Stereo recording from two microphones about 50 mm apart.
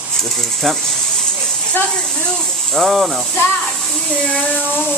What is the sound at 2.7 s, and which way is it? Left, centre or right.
Speech, centre.